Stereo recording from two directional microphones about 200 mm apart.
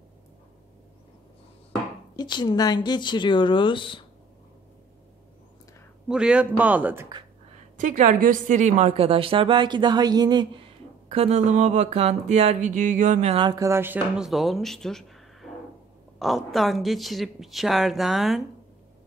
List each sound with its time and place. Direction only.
2.1 s speech: 20° left (ahead or behind)
6.0 s a man's voice: 5° right (ahead or behind)
7.8 s a woman's voice: 40° right (ahead or behind); by 18.4 s centre (ahead or behind)